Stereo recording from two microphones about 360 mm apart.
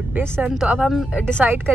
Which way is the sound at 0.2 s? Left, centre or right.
Centre.